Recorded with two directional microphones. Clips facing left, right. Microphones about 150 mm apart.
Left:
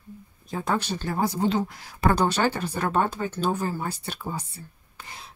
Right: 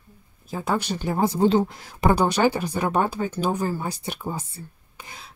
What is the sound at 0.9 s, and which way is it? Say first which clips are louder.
Speech: right 3 dB; 15° right (ahead or behind).